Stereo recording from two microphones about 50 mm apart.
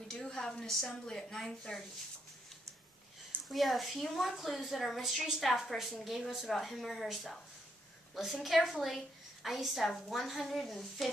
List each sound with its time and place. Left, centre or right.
0.1 s a woman's voice: centre
3.4 s a woman's voice: centre